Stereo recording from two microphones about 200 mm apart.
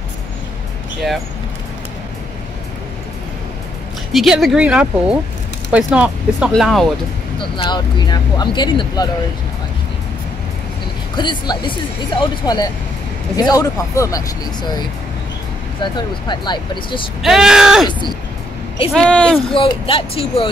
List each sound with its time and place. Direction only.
4.1 s speech: centre (ahead or behind)
7.3 s speech: 25° left (ahead or behind)
11.1 s speech: 20° left (ahead or behind)
15.8 s speech: 25° left (ahead or behind)
17.2 s speech: centre (ahead or behind)
18.9 s speech: 5° left (ahead or behind)
19.5 s speech: 25° left (ahead or behind)